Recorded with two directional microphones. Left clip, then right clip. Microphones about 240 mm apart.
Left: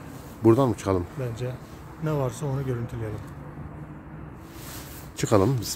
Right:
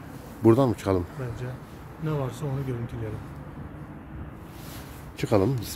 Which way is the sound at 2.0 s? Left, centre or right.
Left.